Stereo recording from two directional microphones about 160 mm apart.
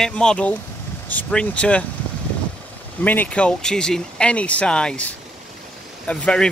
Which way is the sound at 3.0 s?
10° left (ahead or behind).